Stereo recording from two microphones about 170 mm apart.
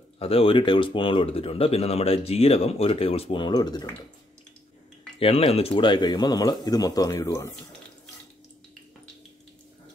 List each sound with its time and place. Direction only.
0.2 s speech: 35° left (ahead or behind)
5.2 s speech: 35° left (ahead or behind); by 7.5 s 15° left (ahead or behind)